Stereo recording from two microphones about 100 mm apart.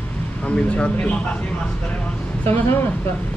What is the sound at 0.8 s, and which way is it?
Speech, 15° left (ahead or behind).